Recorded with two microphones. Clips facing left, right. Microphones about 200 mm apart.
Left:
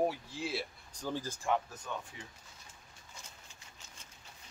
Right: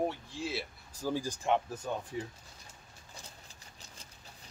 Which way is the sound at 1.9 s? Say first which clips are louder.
Right 6 dB; 35° right (ahead or behind).